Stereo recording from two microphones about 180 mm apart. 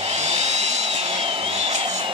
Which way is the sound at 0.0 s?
40° right (ahead or behind).